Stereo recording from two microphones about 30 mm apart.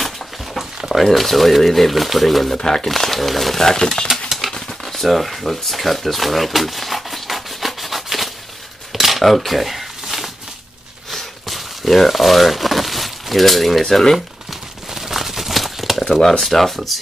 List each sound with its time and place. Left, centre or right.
1.0 s speech: centre
2.5 s speech: left
2.8 s speech: centre
3.7 s speech: left
4.1 s a sound: centre
4.8 s a sound: centre
8.9 s cutlery: centre
9.2 s a sound: centre
15.0 s crumpling: centre
16.2 s speech: centre